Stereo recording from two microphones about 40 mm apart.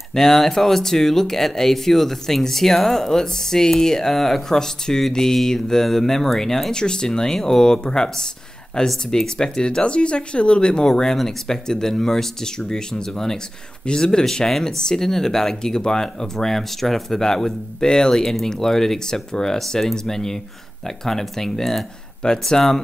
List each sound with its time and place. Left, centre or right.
0.1 s speech: centre
6.8 s speech: centre